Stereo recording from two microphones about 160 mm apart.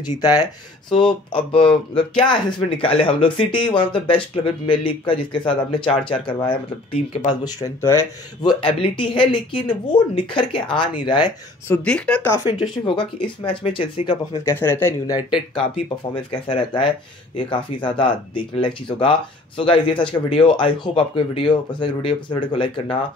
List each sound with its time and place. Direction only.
0.3 s speech: 30° left (ahead or behind)
2.8 s speech: 35° left (ahead or behind); by 8.1 s 15° left (ahead or behind)
8.4 s speech: 30° left (ahead or behind)
11.7 s speech: 5° left (ahead or behind)
12.4 s speech: 30° left (ahead or behind)
14.4 s speech: 15° left (ahead or behind)
15.1 s speech: 30° left (ahead or behind)